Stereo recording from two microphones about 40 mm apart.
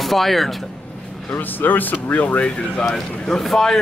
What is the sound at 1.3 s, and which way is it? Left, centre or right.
Speech, left.